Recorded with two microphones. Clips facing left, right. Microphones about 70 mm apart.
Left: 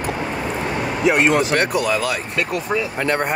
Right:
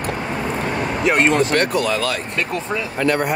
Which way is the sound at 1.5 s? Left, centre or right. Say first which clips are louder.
Even; centre.